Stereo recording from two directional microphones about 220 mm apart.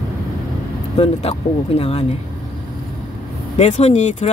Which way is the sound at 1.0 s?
25° left (ahead or behind).